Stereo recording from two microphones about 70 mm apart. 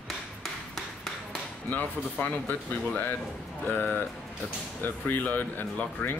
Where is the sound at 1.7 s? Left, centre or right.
Left.